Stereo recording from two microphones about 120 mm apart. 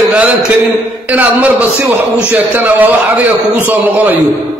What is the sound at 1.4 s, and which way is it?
A man's voice, 15° right (ahead or behind).